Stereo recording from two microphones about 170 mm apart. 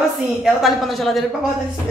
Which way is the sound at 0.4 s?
Centre (ahead or behind).